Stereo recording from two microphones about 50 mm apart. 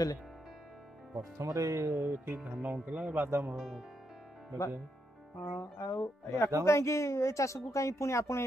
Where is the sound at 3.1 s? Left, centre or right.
Right.